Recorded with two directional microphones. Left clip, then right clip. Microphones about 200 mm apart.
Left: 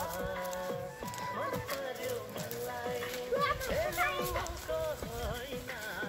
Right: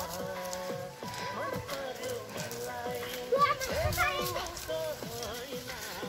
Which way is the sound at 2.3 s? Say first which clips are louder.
Right 1 dB; centre (ahead or behind).